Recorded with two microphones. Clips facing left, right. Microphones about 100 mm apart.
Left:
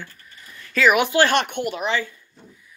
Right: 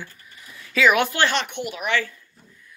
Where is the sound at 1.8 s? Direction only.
25° left (ahead or behind).